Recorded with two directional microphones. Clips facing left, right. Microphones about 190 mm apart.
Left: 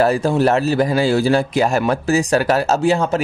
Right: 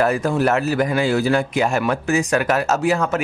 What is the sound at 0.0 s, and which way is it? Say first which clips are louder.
Speech: left 3 dB; 30° left (ahead or behind).